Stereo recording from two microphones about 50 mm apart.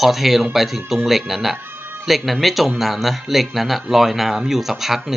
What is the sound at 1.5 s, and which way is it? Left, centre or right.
Music, right.